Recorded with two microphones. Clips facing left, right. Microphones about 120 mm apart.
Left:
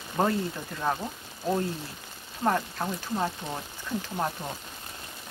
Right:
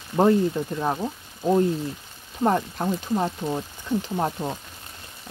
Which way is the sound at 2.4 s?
25° right (ahead or behind).